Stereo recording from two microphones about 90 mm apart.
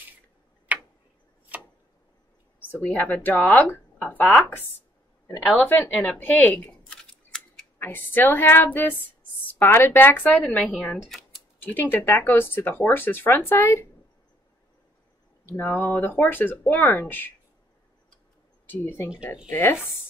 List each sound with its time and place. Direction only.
0.7 s tick-tock: 15° right (ahead or behind)
2.7 s speech: 20° left (ahead or behind)
5.6 s speech: 15° left (ahead or behind)
6.7 s scissors: 5° left (ahead or behind)
7.8 s speech: 20° left (ahead or behind)
15.4 s speech: 20° left (ahead or behind)
18.7 s speech: 25° left (ahead or behind)